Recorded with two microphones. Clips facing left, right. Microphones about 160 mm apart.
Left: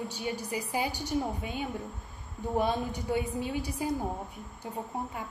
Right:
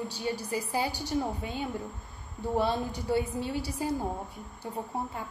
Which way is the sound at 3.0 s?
15° left (ahead or behind).